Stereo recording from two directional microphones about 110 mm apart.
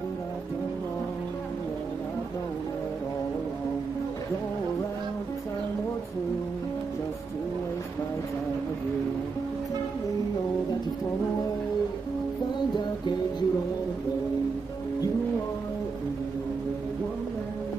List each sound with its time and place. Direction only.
12.7 s music: 40° left (ahead or behind)